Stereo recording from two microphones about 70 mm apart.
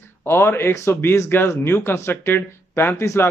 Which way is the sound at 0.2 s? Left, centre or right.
Left.